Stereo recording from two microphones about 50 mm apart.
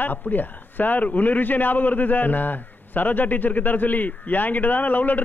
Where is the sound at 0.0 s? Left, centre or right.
Left.